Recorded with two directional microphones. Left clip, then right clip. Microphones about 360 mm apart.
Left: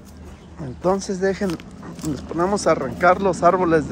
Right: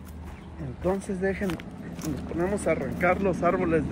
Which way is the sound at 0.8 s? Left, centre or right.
Centre.